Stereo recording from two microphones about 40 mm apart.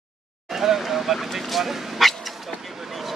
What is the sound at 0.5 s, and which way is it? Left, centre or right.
Vehicle, centre.